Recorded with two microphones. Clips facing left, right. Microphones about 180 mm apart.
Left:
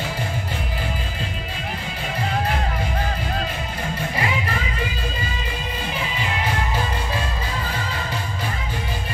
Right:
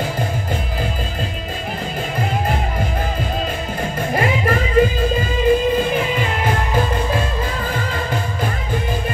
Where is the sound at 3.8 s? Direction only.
45° right (ahead or behind).